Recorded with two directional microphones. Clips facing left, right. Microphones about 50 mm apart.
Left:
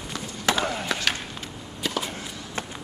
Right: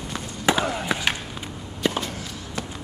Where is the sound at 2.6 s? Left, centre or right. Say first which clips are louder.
Right 1 dB; left.